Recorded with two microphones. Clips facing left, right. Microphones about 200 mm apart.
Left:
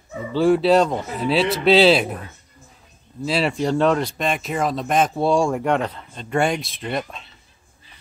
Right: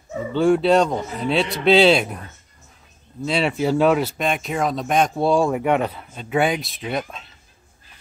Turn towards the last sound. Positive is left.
turn(degrees=0)  # may be behind; listen again after turning